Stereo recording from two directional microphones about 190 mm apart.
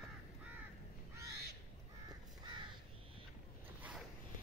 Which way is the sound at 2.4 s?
25° right (ahead or behind).